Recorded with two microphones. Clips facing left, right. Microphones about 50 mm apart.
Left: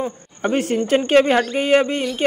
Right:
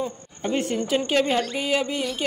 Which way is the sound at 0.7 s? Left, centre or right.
Left.